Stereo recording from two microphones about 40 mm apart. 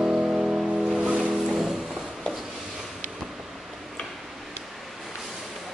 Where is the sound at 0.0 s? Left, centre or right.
Right.